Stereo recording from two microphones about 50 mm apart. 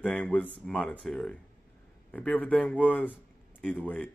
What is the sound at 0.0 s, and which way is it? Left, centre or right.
Speech, left.